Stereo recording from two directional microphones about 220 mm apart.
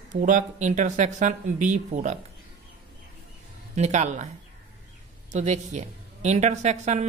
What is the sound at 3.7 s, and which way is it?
Speech, 30° right (ahead or behind).